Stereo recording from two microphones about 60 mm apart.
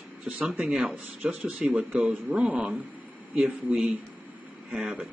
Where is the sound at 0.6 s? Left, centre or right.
Centre.